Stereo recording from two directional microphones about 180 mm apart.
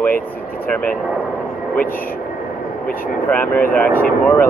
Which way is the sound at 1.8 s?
55° left (ahead or behind).